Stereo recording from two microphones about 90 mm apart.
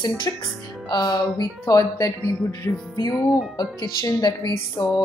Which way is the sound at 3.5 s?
45° left (ahead or behind).